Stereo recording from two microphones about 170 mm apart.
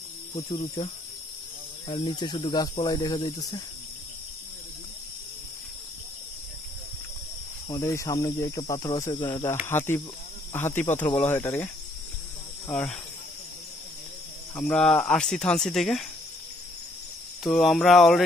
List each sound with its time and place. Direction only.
0.3 s speech: 30° left (ahead or behind)
1.9 s speech: 30° left (ahead or behind)
7.6 s speech: 25° left (ahead or behind)
14.5 s speech: 5° left (ahead or behind)
17.4 s speech: centre (ahead or behind)